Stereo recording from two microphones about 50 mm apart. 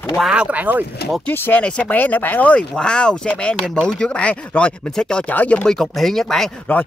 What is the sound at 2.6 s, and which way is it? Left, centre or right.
Speech, centre.